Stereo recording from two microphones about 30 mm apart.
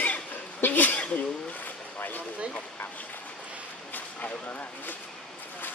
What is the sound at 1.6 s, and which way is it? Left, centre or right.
Vehicle, left.